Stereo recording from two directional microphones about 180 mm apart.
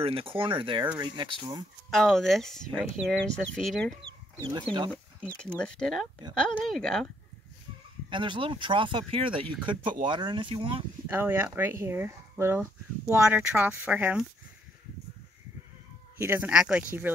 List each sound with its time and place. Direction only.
0.0 s speech: 30° right (ahead or behind)
1.9 s speech: centre (ahead or behind)
4.5 s speech: 25° right (ahead or behind)
5.6 s speech: 5° left (ahead or behind)
8.1 s speech: 25° right (ahead or behind)
11.1 s speech: 10° right (ahead or behind)
16.2 s speech: 10° right (ahead or behind)